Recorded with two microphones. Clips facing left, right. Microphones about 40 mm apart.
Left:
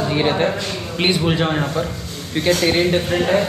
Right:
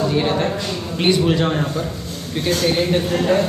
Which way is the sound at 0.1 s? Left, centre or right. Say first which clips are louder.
Left 1 dB; left.